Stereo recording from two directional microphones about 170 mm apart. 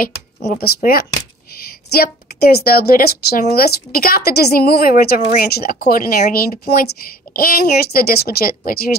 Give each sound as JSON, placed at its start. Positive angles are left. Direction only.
{"t": 0.0, "sound": "speech", "side_deg": 60}
{"t": 2.0, "sound": "a woman's voice", "side_deg": 70}